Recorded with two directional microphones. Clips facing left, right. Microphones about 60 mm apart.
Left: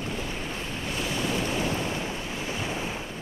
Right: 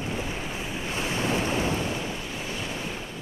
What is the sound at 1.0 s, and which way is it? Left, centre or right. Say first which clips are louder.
Waves: right 2 dB; right.